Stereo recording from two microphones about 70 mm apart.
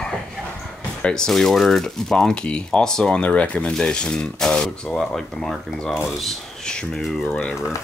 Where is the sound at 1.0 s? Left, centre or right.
Centre.